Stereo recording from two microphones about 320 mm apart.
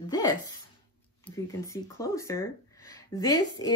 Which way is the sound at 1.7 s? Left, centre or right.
Centre.